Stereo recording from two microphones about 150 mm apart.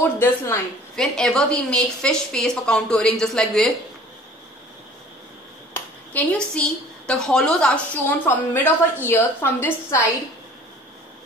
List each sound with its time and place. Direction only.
0.0 s a woman's voice: 15° left (ahead or behind)
0.9 s a woman's voice: 5° left (ahead or behind)
5.7 s a woman's voice: 10° left (ahead or behind)